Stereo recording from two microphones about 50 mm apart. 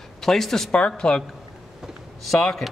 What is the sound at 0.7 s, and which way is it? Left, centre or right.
Speech, left.